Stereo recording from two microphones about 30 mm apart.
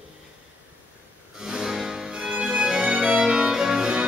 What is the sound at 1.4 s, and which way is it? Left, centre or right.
Music, right.